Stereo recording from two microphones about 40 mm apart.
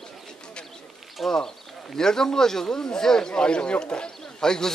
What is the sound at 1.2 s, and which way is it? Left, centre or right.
A man's voice, centre.